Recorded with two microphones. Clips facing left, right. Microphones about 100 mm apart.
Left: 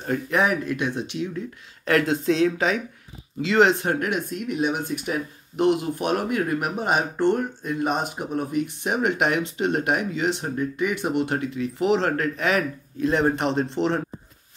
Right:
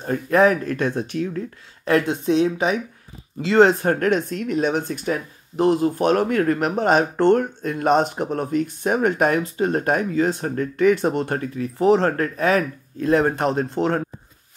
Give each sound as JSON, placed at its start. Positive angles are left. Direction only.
{"t": 0.0, "sound": "speech", "side_deg": -35}
{"t": 2.2, "sound": "speech", "side_deg": -25}
{"t": 6.2, "sound": "speech", "side_deg": 10}
{"t": 6.7, "sound": "speech", "side_deg": -50}